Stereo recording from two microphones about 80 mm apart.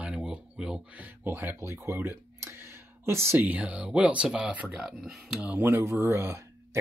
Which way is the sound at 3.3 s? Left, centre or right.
Centre.